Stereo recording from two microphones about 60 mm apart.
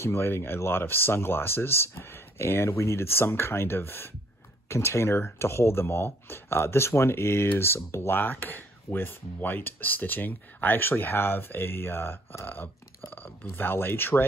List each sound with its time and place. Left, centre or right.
0.0 s speech: left
8.2 s speech: left